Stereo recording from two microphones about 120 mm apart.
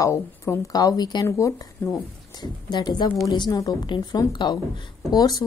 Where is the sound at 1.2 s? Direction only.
25° left (ahead or behind).